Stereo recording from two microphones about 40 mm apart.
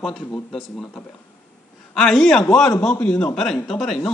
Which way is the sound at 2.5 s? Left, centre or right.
Centre.